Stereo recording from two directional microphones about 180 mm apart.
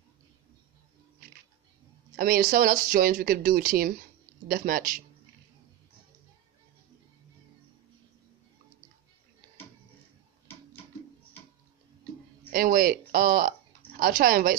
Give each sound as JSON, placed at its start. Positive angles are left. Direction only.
{"t": 2.1, "sound": "speech", "side_deg": -55}
{"t": 12.5, "sound": "speech", "side_deg": -55}